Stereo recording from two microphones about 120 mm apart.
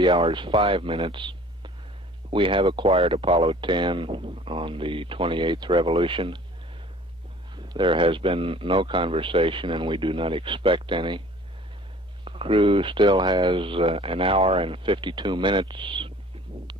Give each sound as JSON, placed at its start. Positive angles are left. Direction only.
{"t": 0.1, "sound": "speech", "side_deg": -40}
{"t": 7.5, "sound": "speech", "side_deg": -40}
{"t": 12.3, "sound": "speech", "side_deg": -50}